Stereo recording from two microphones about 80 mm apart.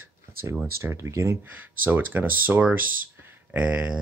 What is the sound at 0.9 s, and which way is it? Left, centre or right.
Speech, right.